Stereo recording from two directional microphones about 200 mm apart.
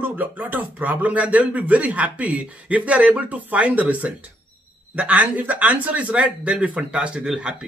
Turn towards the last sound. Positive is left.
turn(degrees=-5)  # may be behind; listen again after turning